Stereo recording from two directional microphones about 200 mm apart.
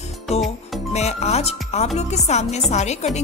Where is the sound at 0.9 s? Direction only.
35° left (ahead or behind).